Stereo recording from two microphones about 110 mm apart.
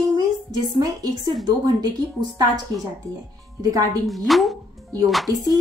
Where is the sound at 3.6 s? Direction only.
35° right (ahead or behind).